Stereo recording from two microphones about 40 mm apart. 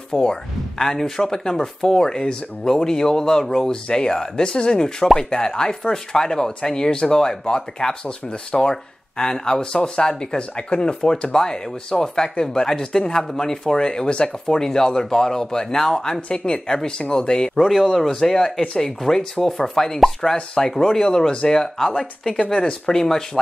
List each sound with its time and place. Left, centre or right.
0.1 s speech: centre
17.9 s speech: centre
21.7 s speech: centre